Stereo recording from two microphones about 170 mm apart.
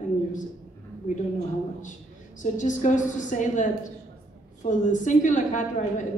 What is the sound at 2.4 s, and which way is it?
A man's voice, 45° left (ahead or behind).